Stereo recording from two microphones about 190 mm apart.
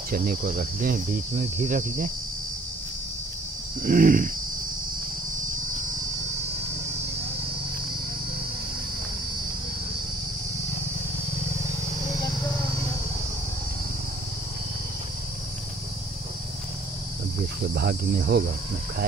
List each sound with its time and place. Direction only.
0.1 s speech: 50° right (ahead or behind)
3.8 s speech: 45° right (ahead or behind)
17.7 s cricket: 60° right (ahead or behind)